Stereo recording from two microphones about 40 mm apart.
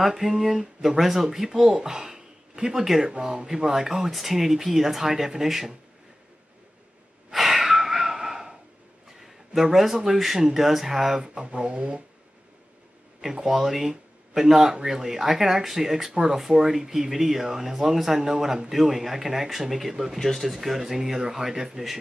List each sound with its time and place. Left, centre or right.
0.0 s speech: centre
3.1 s speech: centre
7.3 s gasp: centre
7.6 s a sound: centre
10.1 s speech: centre; by 12.0 s right
13.2 s speech: centre
20.2 s speech: centre
20.4 s speech: centre